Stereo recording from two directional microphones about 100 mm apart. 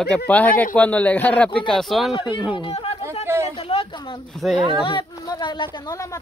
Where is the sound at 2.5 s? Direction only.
60° left (ahead or behind).